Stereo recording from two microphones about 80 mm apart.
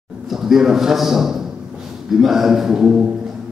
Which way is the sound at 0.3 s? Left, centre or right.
Centre.